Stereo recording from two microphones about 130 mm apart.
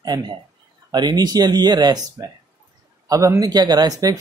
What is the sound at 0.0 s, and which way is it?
Speech, 30° right (ahead or behind).